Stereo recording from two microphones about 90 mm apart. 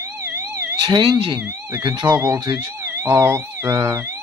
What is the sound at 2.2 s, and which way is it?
Speech, 40° right (ahead or behind).